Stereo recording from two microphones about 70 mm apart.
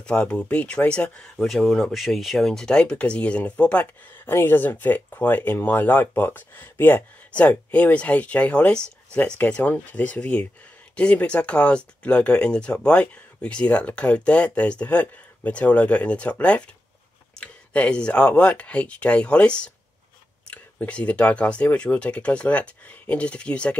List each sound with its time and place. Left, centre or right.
0.0 s speech: centre
4.3 s speech: left
4.6 s speech: left